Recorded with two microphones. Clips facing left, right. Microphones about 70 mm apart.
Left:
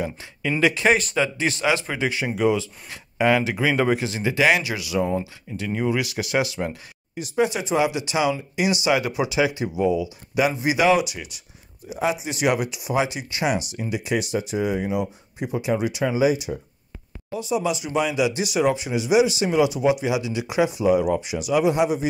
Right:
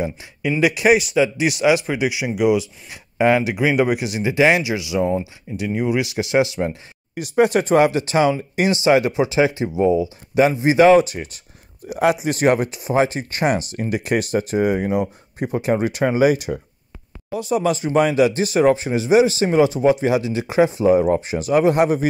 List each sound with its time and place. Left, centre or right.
0.6 s speech: centre
7.3 s speech: right
8.8 s speech: right
11.9 s speech: right
12.3 s speech: right